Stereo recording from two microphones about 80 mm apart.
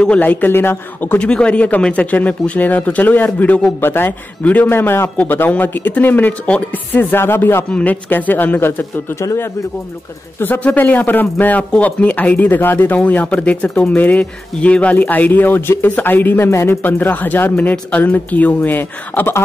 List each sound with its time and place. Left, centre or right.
0.0 s a man's voice: centre
9.2 s speech: left
10.4 s a man's voice: left